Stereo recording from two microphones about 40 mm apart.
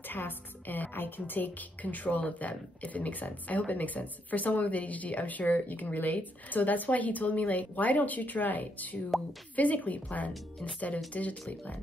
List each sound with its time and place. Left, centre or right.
0.1 s a woman's voice: left